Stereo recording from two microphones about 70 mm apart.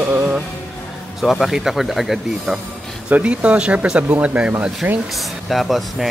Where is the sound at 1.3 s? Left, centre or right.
Centre.